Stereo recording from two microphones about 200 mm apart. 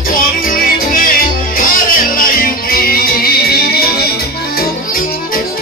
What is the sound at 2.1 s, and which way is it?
Music, 45° left (ahead or behind).